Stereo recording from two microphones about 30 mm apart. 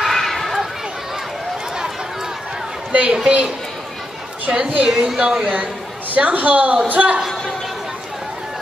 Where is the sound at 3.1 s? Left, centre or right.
Right.